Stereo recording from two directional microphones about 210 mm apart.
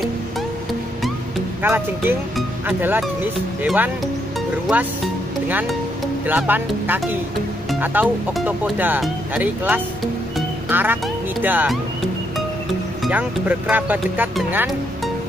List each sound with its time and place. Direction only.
1.6 s speech: 10° right (ahead or behind)
13.0 s speech: 5° right (ahead or behind)